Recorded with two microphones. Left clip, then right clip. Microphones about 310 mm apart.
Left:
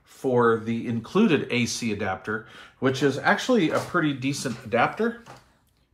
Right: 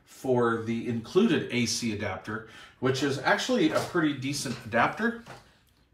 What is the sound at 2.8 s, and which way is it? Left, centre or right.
Speech, centre.